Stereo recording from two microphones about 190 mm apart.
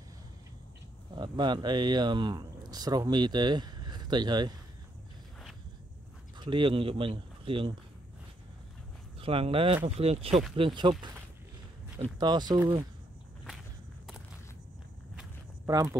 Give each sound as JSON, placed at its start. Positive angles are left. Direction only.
{"t": 1.1, "sound": "speech", "side_deg": -25}
{"t": 6.4, "sound": "speech", "side_deg": -25}
{"t": 9.2, "sound": "speech", "side_deg": -30}
{"t": 15.6, "sound": "speech", "side_deg": -15}